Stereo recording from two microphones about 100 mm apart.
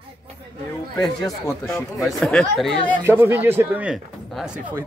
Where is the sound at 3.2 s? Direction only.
20° right (ahead or behind).